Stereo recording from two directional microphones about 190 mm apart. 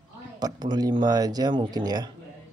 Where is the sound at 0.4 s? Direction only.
20° right (ahead or behind).